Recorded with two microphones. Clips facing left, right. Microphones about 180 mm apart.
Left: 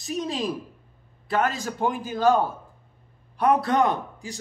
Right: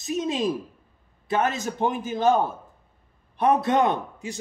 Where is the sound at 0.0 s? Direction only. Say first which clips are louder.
Right 3 dB; 20° right (ahead or behind).